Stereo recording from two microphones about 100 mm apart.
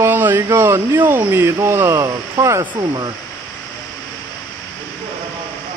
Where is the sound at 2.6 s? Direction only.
50° right (ahead or behind).